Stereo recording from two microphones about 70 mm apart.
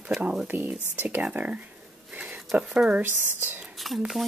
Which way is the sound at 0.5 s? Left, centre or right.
Right.